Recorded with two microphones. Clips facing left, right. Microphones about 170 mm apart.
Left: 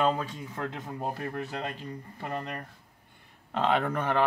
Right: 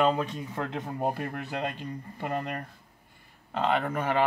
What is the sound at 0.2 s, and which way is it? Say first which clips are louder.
Speech: right 3 dB; 20° right (ahead or behind).